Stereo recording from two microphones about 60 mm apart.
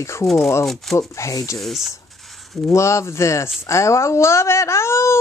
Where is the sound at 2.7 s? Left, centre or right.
Left.